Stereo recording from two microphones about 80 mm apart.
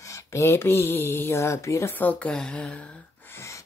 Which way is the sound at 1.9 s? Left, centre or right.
Centre.